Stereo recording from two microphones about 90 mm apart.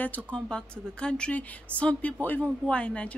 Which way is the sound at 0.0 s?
15° left (ahead or behind).